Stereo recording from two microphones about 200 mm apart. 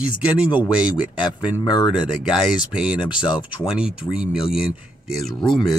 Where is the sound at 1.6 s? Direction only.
20° left (ahead or behind).